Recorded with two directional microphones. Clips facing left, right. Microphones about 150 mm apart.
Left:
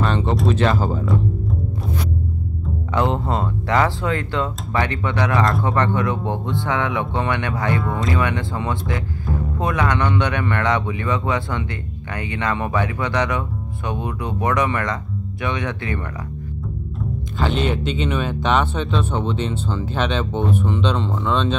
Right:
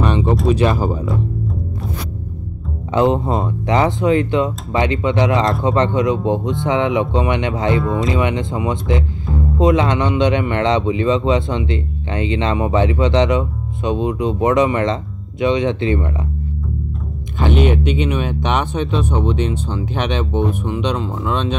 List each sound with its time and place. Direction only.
0.0 s a sound: 15° right (ahead or behind)
0.5 s speech: 15° right (ahead or behind)
2.9 s speech: 20° right (ahead or behind)
17.4 s speech: 15° right (ahead or behind)